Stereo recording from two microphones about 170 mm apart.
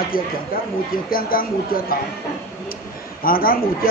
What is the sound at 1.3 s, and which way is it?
Speech, 60° left (ahead or behind).